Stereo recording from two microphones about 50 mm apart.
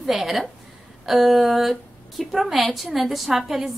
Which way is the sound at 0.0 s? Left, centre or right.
Centre.